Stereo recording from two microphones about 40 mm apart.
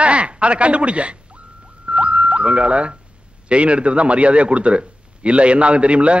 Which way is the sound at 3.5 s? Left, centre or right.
Right.